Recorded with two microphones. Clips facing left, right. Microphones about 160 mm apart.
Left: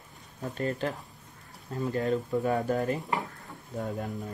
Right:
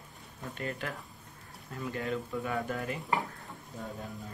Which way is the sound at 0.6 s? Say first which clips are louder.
Left 7 dB; 35° left (ahead or behind).